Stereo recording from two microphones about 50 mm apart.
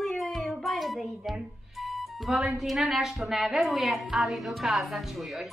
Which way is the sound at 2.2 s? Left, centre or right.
Centre.